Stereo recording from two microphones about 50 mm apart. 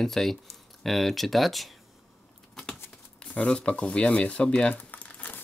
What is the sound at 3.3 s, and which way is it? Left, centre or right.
Speech, left.